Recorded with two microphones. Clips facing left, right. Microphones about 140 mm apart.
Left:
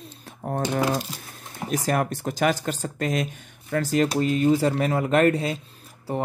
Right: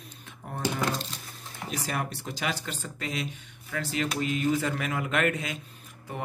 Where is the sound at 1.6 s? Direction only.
50° left (ahead or behind).